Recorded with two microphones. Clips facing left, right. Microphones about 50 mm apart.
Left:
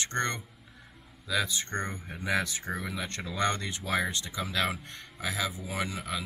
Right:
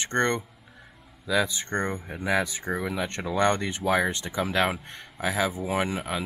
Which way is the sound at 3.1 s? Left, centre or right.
Right.